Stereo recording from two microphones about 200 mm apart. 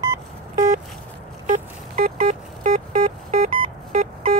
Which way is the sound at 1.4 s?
40° right (ahead or behind).